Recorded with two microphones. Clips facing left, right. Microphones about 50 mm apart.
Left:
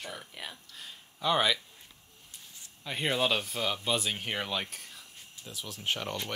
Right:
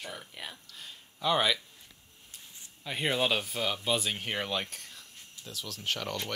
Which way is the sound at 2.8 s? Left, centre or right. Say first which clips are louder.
Even; centre.